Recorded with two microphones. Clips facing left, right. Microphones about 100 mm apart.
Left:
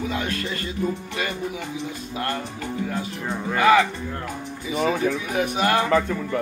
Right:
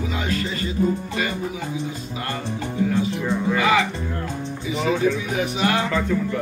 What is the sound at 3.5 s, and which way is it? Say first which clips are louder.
Speech: left 3 dB; 50° left (ahead or behind).